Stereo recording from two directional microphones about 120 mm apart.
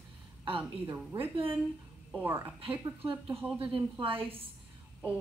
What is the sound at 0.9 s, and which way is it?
A woman's voice, 15° right (ahead or behind).